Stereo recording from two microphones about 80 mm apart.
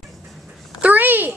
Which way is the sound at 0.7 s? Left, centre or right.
Centre.